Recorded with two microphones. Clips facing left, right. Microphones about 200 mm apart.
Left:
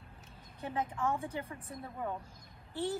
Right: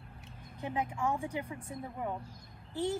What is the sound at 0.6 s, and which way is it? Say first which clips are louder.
Speech: right 1 dB; 15° right (ahead or behind).